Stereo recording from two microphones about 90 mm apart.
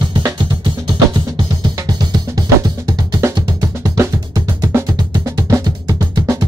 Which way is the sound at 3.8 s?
30° right (ahead or behind).